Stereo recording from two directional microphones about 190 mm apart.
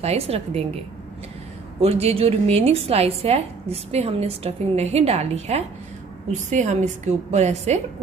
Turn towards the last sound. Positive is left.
turn(degrees=-35)  # may be behind; listen again after turning